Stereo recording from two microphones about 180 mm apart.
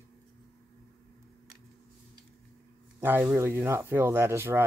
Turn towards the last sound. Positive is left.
turn(degrees=-15)  # may be behind; listen again after turning